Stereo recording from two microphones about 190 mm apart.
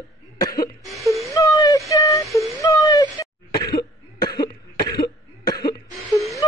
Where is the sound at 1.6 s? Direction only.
15° left (ahead or behind).